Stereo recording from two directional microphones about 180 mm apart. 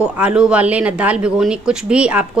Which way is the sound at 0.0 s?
5° right (ahead or behind).